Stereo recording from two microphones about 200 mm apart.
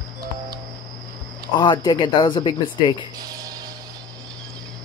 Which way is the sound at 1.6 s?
20° left (ahead or behind).